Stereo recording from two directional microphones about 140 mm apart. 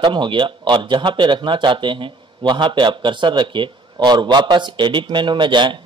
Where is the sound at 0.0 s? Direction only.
35° right (ahead or behind).